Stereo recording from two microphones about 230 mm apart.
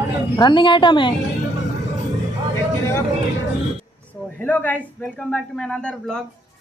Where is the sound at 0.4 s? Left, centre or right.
Centre.